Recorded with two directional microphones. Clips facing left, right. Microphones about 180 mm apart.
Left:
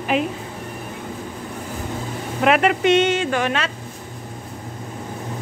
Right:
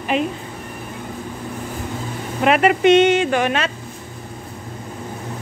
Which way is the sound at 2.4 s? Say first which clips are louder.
Right 1 dB; centre (ahead or behind).